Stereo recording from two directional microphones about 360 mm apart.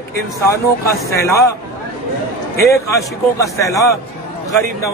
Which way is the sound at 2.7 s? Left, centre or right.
Centre.